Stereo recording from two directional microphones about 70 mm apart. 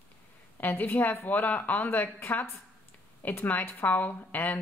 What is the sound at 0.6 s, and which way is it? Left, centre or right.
Speech, left.